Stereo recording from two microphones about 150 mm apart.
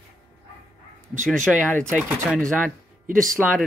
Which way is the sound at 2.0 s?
5° right (ahead or behind).